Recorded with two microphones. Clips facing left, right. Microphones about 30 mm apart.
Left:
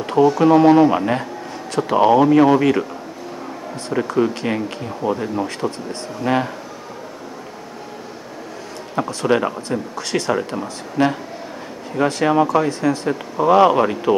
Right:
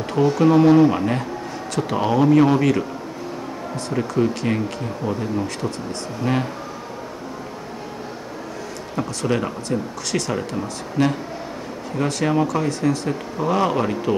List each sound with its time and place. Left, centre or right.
0.4 s speech: centre
3.9 s speech: centre
8.9 s speech: centre